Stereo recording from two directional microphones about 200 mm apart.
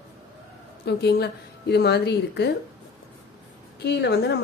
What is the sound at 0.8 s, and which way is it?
A woman's voice, 55° left (ahead or behind).